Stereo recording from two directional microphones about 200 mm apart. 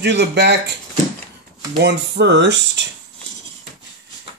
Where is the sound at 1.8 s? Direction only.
55° right (ahead or behind).